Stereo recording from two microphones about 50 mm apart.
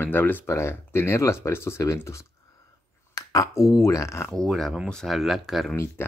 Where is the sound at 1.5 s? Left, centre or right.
Left.